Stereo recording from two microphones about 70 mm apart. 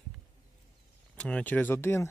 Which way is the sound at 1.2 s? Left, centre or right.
Centre.